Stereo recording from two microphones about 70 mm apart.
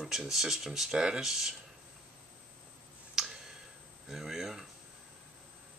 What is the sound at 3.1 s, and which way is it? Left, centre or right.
Tick, centre.